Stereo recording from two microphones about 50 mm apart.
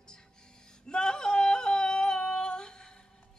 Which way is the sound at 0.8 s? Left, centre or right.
Centre.